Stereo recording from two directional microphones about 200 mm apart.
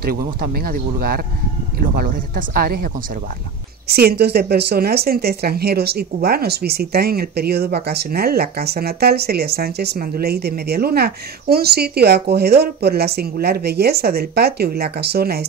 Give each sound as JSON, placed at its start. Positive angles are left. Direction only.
{"t": 0.4, "sound": "speech", "side_deg": -50}